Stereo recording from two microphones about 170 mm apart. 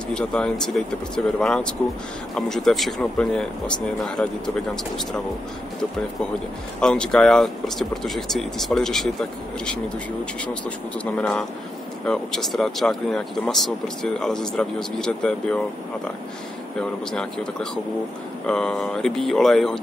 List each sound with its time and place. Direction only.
0.1 s speech: 5° left (ahead or behind)
6.8 s speech: 5° left (ahead or behind)
11.1 s speech: 5° left (ahead or behind)
17.1 s speech: 5° left (ahead or behind)